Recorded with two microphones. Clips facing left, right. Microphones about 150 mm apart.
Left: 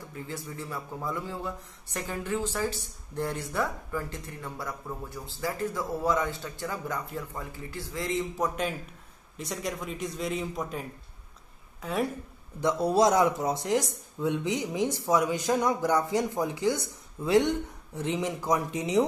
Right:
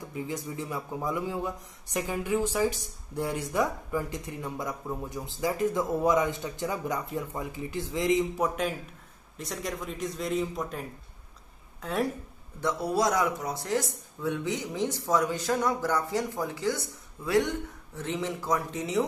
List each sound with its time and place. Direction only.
0.1 s a man's voice: 15° right (ahead or behind)
9.4 s speech: centre (ahead or behind)
11.8 s a woman's voice: centre (ahead or behind)
12.5 s speech: 20° left (ahead or behind)